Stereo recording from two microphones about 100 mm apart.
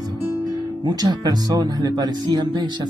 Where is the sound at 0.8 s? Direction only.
45° right (ahead or behind).